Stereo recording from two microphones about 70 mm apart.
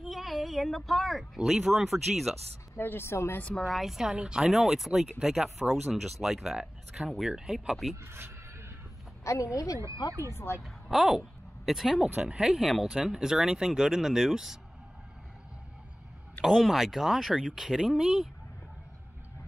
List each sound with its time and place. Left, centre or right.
0.0 s speech: centre
2.8 s speech: left
3.6 s speech: centre
8.0 s a sound: right
9.2 s a woman's voice: left
10.3 s speech: left
10.6 s speech: centre
16.4 s speech: centre